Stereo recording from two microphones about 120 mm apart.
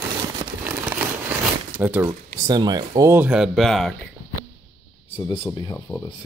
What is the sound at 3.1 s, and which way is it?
Speech, 15° right (ahead or behind).